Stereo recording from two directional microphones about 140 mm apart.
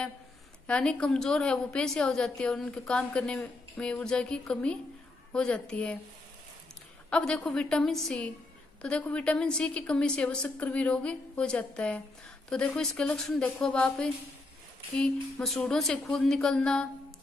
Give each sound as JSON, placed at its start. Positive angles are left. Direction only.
{"t": 0.7, "sound": "a woman's voice", "side_deg": 5}
{"t": 7.1, "sound": "a woman's voice", "side_deg": 5}